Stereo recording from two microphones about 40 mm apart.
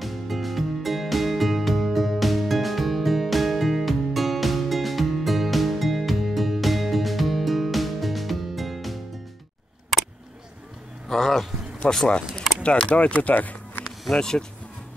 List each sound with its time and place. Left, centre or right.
0.0 s music: centre
11.1 s a sound: centre
11.9 s speech: centre; by 13.6 s left
14.1 s speech: centre